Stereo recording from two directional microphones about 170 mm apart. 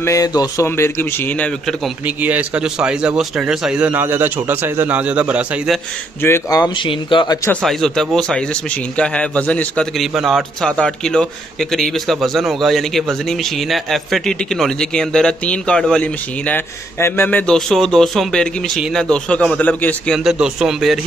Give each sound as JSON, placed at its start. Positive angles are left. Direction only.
{"t": 0.0, "sound": "speech", "side_deg": 20}
{"t": 2.0, "sound": "speech", "side_deg": -10}
{"t": 6.2, "sound": "speech", "side_deg": 20}
{"t": 7.6, "sound": "a man's voice", "side_deg": 0}
{"t": 20.2, "sound": "a man's voice", "side_deg": -5}